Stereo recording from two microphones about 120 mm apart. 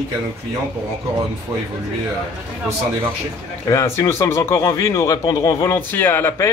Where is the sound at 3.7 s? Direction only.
25° left (ahead or behind).